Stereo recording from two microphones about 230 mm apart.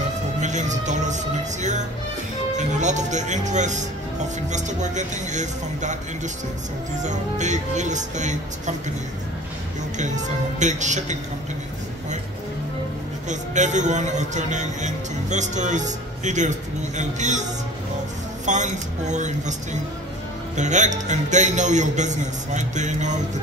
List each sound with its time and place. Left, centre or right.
0.4 s a man's voice: right
9.9 s a man's voice: right
13.3 s a man's voice: right